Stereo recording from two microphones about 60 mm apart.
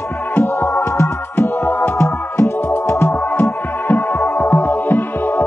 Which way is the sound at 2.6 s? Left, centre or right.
Left.